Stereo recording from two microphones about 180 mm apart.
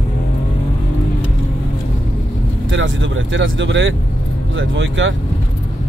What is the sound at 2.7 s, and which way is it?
Speech, 90° right.